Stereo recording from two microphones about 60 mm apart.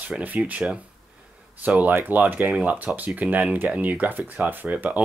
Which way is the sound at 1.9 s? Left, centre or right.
Right.